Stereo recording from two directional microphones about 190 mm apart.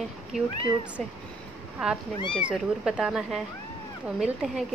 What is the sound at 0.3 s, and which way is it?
Speech, 5° right (ahead or behind).